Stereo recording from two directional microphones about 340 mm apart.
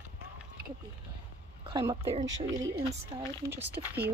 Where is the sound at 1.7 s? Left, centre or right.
Centre.